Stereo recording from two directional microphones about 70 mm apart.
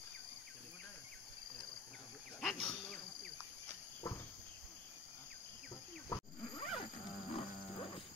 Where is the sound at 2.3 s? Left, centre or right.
Centre.